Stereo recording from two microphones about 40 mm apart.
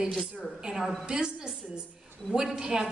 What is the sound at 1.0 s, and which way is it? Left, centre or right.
A woman's voice, right.